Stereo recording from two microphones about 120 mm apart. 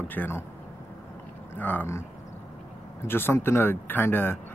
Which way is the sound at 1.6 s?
15° left (ahead or behind).